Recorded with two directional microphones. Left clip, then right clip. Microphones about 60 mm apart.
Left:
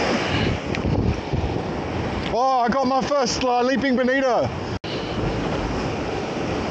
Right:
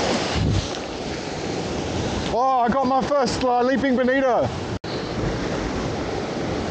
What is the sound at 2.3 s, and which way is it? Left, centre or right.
Speech, left.